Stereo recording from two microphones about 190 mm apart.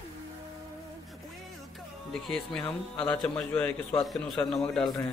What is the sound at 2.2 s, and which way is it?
A man's voice, centre (ahead or behind).